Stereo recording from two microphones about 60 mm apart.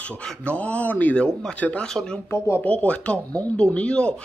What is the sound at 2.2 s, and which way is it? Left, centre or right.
Speech, left.